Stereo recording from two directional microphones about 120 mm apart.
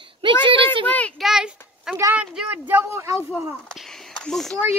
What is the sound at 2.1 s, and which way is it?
Speech, 10° right (ahead or behind).